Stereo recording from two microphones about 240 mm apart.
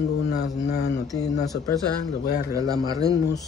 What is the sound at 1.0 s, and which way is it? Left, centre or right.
Mantra, centre.